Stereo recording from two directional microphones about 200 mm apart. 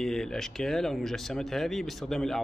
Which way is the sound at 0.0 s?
5° left (ahead or behind).